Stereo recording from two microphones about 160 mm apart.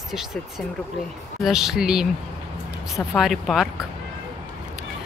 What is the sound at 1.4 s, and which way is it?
Speech, 5° right (ahead or behind).